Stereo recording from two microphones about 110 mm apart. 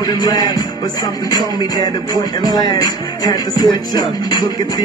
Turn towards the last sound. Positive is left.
turn(degrees=40)  # may be behind; listen again after turning